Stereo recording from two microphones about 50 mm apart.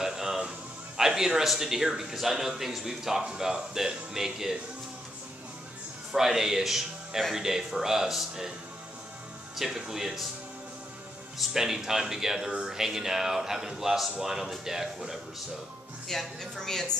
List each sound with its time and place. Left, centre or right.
0.0 s music: centre
0.9 s speech: centre
6.1 s speech: centre
9.6 s speech: centre
11.3 s speech: centre
16.1 s a woman's voice: centre